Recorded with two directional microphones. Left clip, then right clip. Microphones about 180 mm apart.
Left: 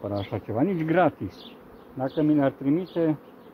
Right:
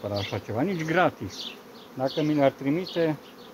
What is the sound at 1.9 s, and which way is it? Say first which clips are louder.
Bee: left 2 dB; 25° left (ahead or behind).